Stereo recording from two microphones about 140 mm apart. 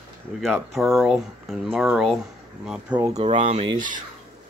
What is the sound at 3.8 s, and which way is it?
Speech, 70° right (ahead or behind).